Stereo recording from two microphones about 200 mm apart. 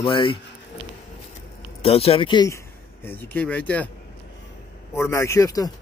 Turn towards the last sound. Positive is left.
turn(degrees=15)  # may be behind; listen again after turning